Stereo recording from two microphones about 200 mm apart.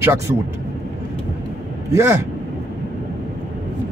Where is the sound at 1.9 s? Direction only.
15° right (ahead or behind).